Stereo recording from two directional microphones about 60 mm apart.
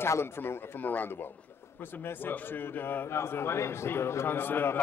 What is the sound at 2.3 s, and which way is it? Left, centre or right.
A man's voice, left.